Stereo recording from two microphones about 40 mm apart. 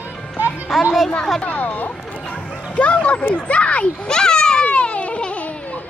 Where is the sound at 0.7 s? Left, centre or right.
Centre.